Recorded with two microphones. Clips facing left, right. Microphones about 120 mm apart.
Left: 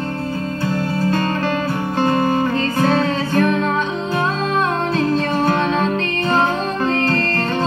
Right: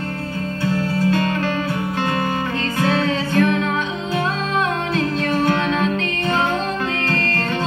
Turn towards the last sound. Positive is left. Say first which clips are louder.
# left 4 dB
turn(degrees=35)  # may be behind; listen again after turning